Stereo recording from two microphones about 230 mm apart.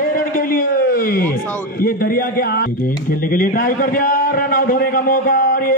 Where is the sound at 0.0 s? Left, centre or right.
Left.